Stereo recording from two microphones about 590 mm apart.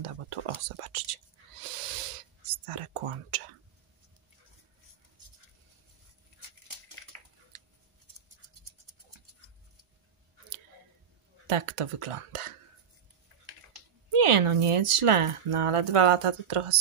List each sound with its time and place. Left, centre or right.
0.0 s whispering: right
11.4 s speech: right
14.1 s speech: right